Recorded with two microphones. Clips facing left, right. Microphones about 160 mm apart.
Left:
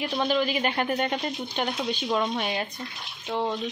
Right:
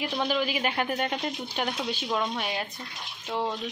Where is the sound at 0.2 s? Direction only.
5° right (ahead or behind).